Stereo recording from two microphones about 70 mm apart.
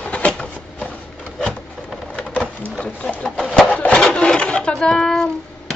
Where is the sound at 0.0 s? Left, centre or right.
Centre.